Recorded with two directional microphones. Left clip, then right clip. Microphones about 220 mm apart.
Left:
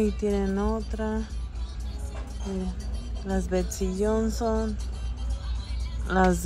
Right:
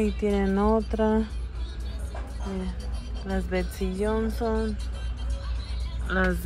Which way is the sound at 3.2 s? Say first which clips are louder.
Left 1 dB; 15° left (ahead or behind).